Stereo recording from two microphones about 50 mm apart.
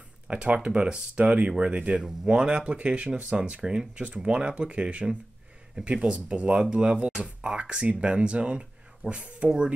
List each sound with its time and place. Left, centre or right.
0.3 s speech: right